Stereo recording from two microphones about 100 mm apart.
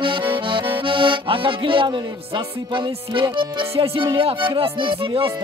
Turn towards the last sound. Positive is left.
turn(degrees=-60)  # may be behind; listen again after turning